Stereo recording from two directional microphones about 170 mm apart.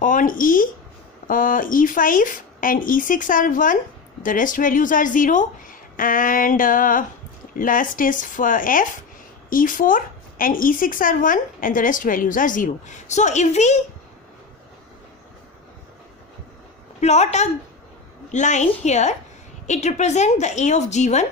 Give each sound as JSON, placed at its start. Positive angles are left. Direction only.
{"t": 0.0, "sound": "speech", "side_deg": 50}
{"t": 17.0, "sound": "a woman's voice", "side_deg": 40}